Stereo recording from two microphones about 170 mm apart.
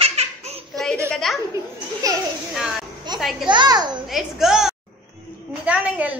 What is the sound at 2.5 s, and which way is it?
Speech, centre (ahead or behind).